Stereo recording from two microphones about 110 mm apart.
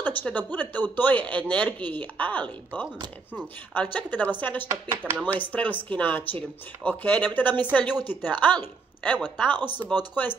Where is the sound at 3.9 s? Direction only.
15° left (ahead or behind).